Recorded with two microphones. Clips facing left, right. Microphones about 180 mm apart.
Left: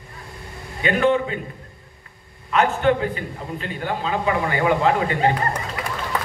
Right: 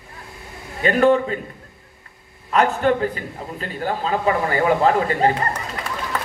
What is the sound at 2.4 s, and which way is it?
A man's voice, 40° right (ahead or behind).